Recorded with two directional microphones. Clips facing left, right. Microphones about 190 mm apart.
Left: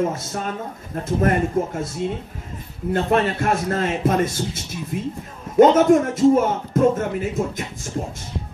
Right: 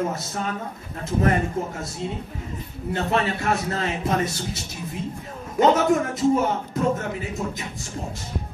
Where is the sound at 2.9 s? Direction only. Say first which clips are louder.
Left 4 dB; 50° left (ahead or behind).